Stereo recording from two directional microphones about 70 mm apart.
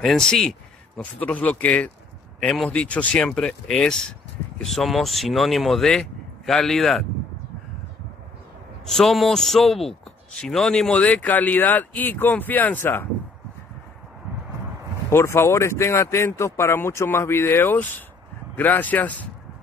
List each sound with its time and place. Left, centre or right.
0.0 s a man's voice: centre
0.9 s a man's voice: left; by 7.1 s centre
8.8 s a man's voice: centre
11.1 s speech: left
15.0 s speech: left